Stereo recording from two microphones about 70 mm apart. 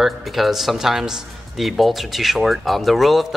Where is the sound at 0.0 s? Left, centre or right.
Centre.